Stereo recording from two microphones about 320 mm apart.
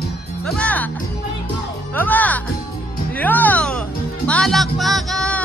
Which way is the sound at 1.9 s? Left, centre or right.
Centre.